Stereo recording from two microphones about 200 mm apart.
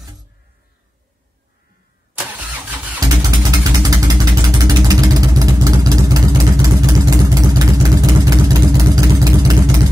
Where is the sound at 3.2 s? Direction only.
20° right (ahead or behind).